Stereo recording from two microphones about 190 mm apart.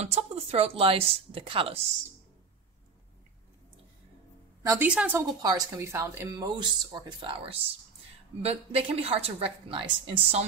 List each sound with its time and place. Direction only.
0.0 s speech: 35° right (ahead or behind)
4.6 s a woman's voice: 10° right (ahead or behind); by 10.4 s 25° right (ahead or behind)